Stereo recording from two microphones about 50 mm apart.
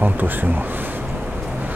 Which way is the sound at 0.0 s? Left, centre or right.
Right.